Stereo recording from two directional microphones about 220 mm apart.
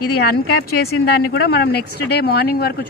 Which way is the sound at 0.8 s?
45° left (ahead or behind).